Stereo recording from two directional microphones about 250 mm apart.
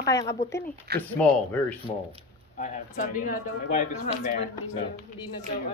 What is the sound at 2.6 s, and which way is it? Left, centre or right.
Speech, left.